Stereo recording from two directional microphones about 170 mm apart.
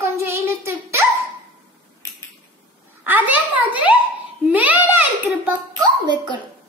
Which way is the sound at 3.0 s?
10° right (ahead or behind).